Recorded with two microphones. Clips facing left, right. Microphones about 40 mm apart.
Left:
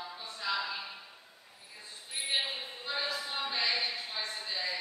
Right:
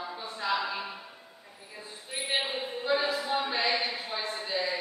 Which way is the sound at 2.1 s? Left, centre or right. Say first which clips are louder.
Right 3 dB; centre.